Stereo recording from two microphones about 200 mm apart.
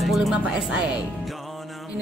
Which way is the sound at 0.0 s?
Centre (ahead or behind).